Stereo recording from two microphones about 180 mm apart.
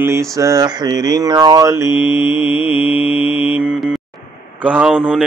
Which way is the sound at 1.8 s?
25° left (ahead or behind).